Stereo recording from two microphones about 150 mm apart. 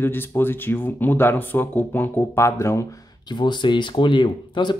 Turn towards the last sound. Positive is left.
turn(degrees=30)  # may be behind; listen again after turning